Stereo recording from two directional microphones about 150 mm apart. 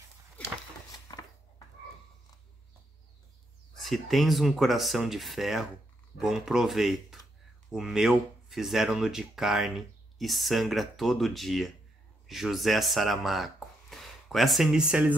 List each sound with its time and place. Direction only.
1.1 s dishes: 20° left (ahead or behind)
3.7 s speech: centre (ahead or behind)